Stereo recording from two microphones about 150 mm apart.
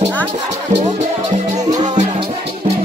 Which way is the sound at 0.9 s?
50° right (ahead or behind).